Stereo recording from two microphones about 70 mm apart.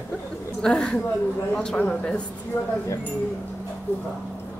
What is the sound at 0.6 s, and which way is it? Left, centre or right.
A woman's voice, centre.